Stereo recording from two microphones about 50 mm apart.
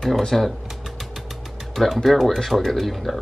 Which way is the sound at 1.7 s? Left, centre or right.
Centre.